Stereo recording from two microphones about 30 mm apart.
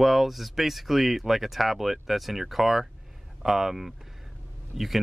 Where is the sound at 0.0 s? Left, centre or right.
Centre.